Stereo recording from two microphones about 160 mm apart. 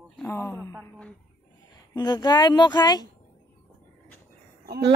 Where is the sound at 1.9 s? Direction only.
25° left (ahead or behind).